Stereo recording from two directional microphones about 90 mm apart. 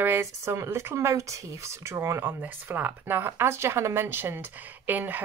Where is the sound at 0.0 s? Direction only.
25° right (ahead or behind).